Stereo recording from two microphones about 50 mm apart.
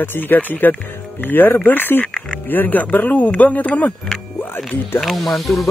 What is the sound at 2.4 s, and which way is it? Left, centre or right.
Speech, left.